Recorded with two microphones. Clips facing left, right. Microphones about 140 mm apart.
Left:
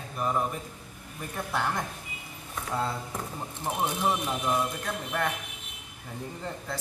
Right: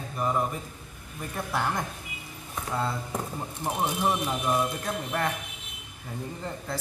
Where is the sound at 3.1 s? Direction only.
15° right (ahead or behind).